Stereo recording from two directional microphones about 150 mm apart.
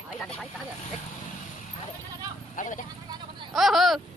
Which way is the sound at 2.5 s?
60° left (ahead or behind).